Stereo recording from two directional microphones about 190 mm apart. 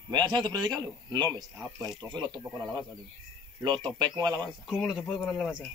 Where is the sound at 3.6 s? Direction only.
25° right (ahead or behind).